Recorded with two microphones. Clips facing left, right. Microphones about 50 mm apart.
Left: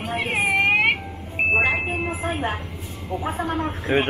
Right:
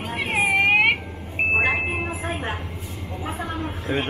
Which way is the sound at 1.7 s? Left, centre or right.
Centre.